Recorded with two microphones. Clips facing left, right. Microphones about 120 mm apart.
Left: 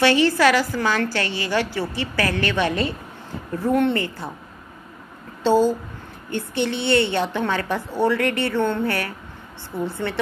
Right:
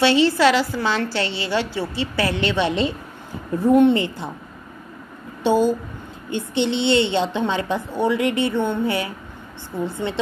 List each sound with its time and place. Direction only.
0.0 s a woman's voice: 20° right (ahead or behind)
5.4 s a woman's voice: 15° right (ahead or behind)